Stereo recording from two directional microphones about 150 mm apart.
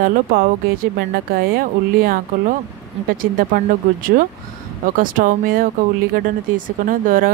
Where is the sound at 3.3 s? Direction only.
65° right (ahead or behind).